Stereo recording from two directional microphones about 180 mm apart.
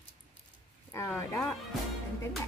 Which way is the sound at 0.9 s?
15° left (ahead or behind).